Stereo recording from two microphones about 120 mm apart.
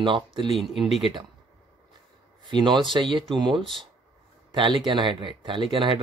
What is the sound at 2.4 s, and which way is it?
Speech, 40° right (ahead or behind).